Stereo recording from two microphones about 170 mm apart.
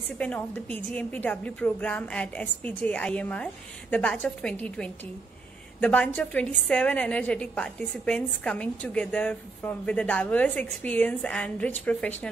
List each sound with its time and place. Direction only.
0.2 s a woman's voice: 5° left (ahead or behind)